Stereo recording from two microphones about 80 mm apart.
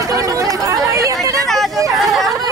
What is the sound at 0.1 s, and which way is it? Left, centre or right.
Chatter, right.